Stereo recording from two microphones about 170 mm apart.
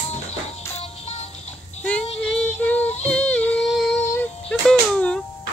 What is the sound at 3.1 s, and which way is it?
Music, 10° left (ahead or behind).